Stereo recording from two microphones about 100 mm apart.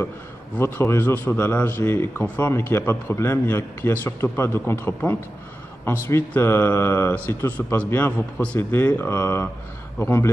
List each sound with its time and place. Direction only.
0.6 s a man's voice: 20° left (ahead or behind)